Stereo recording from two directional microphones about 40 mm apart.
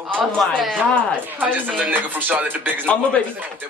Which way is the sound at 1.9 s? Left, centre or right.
Right.